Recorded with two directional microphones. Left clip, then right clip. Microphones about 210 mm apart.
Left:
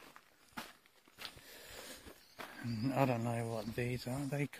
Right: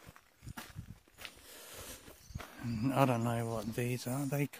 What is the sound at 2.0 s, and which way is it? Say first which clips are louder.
Walk: even; 5° left (ahead or behind).